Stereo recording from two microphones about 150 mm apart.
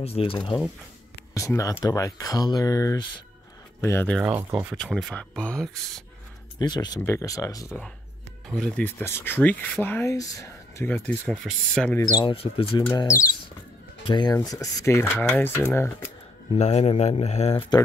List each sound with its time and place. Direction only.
0.0 s speech: 40° left (ahead or behind)
1.3 s speech: 20° left (ahead or behind)
4.2 s speech: 15° right (ahead or behind)
4.7 s speech: 5° left (ahead or behind)
6.6 s speech: 30° left (ahead or behind)
8.5 s speech: 5° left (ahead or behind)
10.9 s speech: 5° left (ahead or behind)
12.0 s speech: 30° left (ahead or behind)
12.9 s speech: 20° left (ahead or behind)
16.5 s speech: 45° left (ahead or behind)